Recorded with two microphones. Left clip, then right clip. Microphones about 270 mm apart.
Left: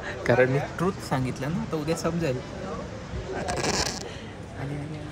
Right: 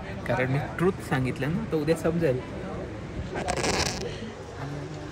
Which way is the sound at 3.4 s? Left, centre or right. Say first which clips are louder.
Right 1 dB; left.